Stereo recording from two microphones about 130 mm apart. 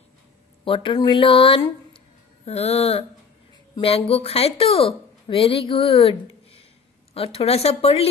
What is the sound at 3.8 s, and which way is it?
Speech, 45° left (ahead or behind).